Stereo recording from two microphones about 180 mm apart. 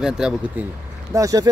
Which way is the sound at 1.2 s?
20° right (ahead or behind).